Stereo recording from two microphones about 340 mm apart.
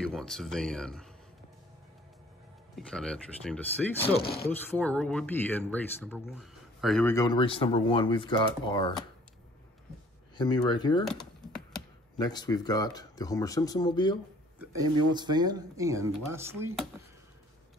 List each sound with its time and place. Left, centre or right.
0.0 s speech: centre
2.7 s speech: centre
4.1 s speech: left
4.5 s speech: centre
10.3 s speech: centre
12.2 s speech: centre
14.6 s speech: centre